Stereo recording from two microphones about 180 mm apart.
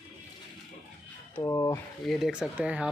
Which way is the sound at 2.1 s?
5° right (ahead or behind).